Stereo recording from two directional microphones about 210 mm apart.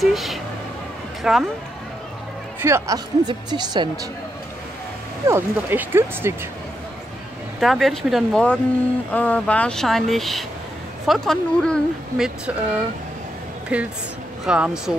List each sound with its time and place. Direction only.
0.0 s speech: centre (ahead or behind)
2.6 s speech: 15° right (ahead or behind)
5.2 s speech: 10° right (ahead or behind)
7.6 s speech: centre (ahead or behind)